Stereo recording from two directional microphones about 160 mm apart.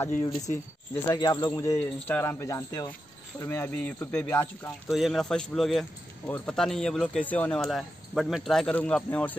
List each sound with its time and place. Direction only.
1.0 s speech: 25° left (ahead or behind)
1.5 s speech: 15° left (ahead or behind)
4.8 s speech: centre (ahead or behind)